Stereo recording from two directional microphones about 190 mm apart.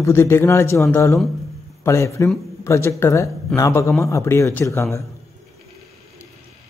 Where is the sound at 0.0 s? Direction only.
15° left (ahead or behind).